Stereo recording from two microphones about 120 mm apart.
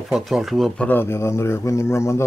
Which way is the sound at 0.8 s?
15° left (ahead or behind).